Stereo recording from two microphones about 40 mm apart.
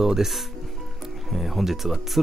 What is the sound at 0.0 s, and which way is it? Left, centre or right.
Speech, centre.